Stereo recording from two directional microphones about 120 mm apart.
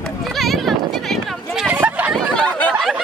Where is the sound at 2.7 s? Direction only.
5° right (ahead or behind).